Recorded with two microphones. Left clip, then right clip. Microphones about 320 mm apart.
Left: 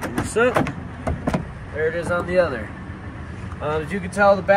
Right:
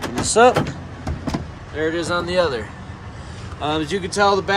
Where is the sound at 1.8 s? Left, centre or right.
Centre.